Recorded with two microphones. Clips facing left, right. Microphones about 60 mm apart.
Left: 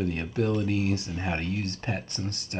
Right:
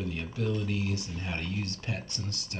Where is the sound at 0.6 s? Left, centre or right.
Left.